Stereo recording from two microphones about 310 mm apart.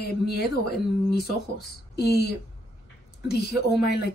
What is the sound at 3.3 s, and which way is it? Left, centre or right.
Speech, left.